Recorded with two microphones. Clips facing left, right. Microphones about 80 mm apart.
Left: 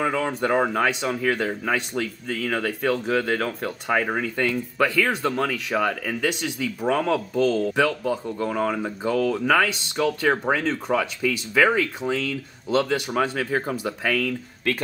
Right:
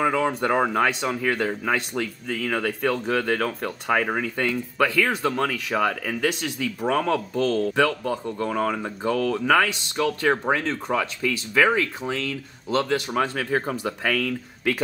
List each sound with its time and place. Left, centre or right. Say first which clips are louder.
0.0 s speech: right 1 dB; centre